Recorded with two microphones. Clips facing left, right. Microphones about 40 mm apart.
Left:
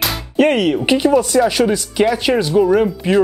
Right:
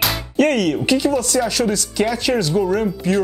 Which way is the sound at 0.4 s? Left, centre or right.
Left.